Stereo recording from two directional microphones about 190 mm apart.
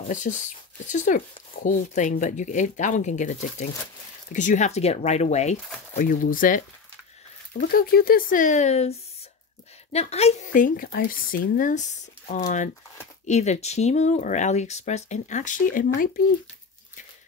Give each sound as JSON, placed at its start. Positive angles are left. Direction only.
{"t": 0.1, "sound": "speech", "side_deg": 40}
{"t": 7.7, "sound": "speech", "side_deg": 50}
{"t": 9.9, "sound": "speech", "side_deg": 35}